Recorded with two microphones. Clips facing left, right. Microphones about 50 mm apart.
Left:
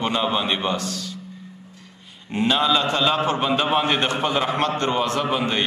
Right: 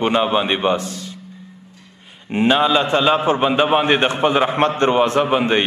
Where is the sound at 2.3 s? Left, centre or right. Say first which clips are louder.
Right 4 dB; right.